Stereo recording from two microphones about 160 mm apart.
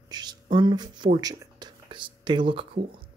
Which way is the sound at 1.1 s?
25° right (ahead or behind).